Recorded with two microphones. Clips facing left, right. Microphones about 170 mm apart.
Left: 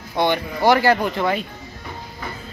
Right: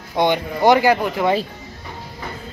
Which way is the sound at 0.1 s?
15° right (ahead or behind).